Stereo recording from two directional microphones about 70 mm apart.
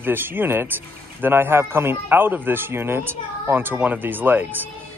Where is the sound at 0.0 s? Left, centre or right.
Right.